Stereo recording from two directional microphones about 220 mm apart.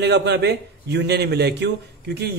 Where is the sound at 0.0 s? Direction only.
50° right (ahead or behind).